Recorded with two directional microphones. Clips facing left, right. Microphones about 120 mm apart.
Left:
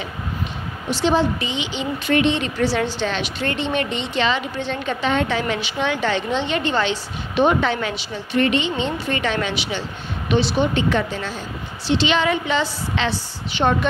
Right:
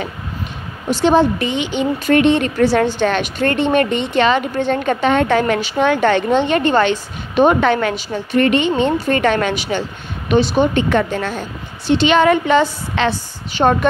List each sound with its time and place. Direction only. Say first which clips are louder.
0.8 s a woman's voice: right 6 dB; 50° right (ahead or behind)